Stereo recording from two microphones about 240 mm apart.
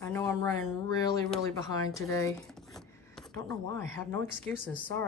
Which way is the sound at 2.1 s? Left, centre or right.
Centre.